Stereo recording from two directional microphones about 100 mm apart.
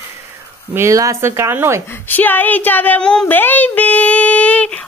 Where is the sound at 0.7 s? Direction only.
30° right (ahead or behind).